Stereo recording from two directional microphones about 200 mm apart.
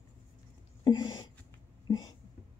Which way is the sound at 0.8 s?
20° left (ahead or behind).